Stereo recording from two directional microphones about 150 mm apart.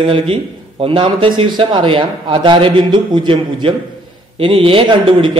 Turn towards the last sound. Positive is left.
turn(degrees=-35)  # may be behind; listen again after turning